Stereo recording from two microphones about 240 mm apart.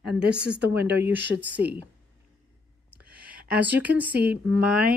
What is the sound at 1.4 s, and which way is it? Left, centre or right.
Speech, centre.